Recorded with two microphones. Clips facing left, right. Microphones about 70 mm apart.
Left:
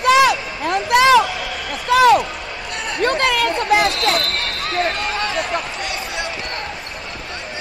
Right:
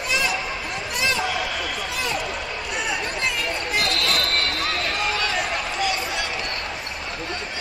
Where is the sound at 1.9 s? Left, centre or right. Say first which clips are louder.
Left 19 dB; left.